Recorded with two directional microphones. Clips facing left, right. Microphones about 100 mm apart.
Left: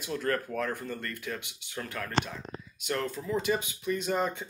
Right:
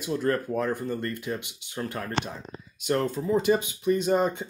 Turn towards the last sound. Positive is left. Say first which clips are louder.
# right 6 dB
turn(degrees=-25)  # may be behind; listen again after turning